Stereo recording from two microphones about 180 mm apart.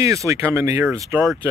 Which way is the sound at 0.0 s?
15° right (ahead or behind).